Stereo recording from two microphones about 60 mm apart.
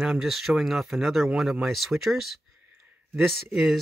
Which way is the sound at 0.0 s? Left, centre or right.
Centre.